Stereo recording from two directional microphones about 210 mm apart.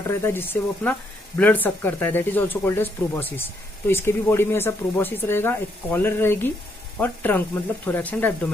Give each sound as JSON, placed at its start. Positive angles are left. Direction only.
{"t": 0.0, "sound": "speech", "side_deg": 10}